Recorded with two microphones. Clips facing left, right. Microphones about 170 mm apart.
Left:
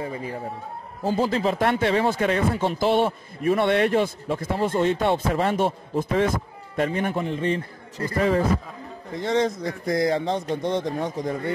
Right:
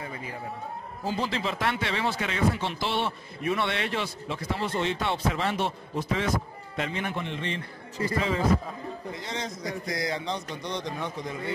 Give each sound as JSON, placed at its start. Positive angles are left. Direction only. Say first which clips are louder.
{"t": 0.0, "sound": "a man's voice", "louder": "left 7 dB", "side_deg": 30}
{"t": 1.0, "sound": "speech", "louder": "left 7 dB", "side_deg": 45}